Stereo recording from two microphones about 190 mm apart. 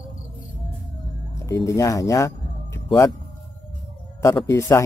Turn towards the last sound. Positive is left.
turn(degrees=15)  # may be behind; listen again after turning